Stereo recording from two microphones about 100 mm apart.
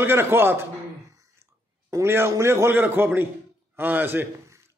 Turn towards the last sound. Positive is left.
turn(degrees=-20)  # may be behind; listen again after turning